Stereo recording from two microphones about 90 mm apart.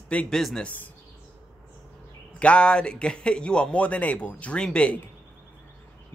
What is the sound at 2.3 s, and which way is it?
Speech, 15° left (ahead or behind).